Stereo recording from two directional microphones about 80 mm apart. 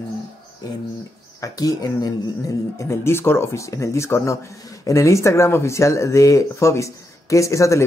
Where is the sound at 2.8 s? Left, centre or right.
Left.